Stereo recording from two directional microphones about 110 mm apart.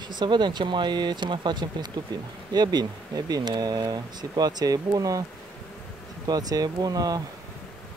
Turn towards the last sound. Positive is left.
turn(degrees=-35)  # may be behind; listen again after turning